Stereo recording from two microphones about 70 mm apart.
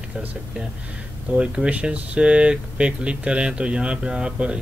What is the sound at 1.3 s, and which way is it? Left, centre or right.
Speech, centre.